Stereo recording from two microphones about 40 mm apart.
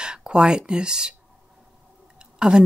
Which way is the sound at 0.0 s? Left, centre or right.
Right.